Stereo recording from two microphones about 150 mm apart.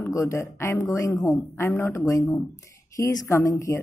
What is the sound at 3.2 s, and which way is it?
Speech, 20° left (ahead or behind).